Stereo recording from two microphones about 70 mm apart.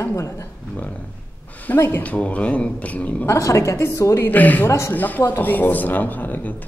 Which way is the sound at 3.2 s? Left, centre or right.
Left.